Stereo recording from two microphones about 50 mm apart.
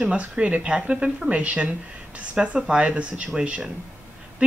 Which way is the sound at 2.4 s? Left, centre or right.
Centre.